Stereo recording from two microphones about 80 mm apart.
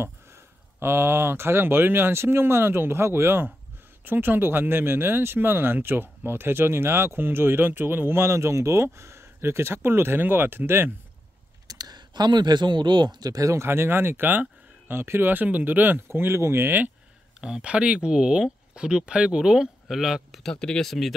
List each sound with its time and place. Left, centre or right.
0.7 s speech: right
11.6 s speech: right
17.4 s speech: centre
20.2 s speech: centre